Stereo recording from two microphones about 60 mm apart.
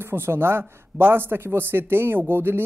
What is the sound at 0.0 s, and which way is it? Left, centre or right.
Speech, right.